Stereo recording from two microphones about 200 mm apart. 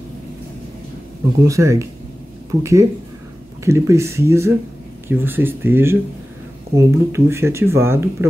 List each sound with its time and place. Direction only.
1.4 s speech: 15° right (ahead or behind)